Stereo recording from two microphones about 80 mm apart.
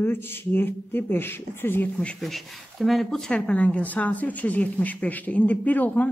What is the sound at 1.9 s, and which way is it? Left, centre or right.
Speech, centre.